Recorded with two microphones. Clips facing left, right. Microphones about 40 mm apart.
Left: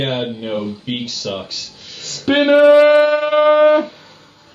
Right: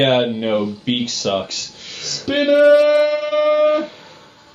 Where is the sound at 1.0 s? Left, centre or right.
Right.